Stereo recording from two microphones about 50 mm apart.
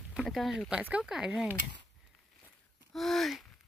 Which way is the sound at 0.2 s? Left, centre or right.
Centre.